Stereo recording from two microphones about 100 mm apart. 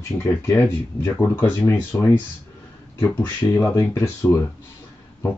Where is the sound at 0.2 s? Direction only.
25° left (ahead or behind).